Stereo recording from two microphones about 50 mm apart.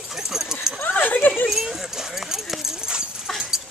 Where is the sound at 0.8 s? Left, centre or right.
Left.